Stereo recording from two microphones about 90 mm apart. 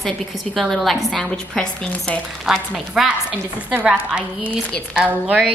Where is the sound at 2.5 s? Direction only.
Centre (ahead or behind).